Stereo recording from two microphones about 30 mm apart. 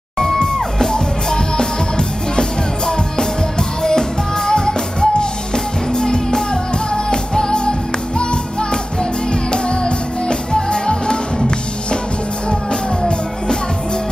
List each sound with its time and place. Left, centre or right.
0.2 s music: centre